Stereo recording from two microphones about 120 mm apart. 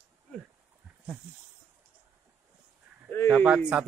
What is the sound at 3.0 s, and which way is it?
Speech, 15° left (ahead or behind).